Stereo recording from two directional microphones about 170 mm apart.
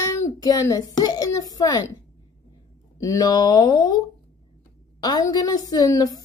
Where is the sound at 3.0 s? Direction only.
20° left (ahead or behind).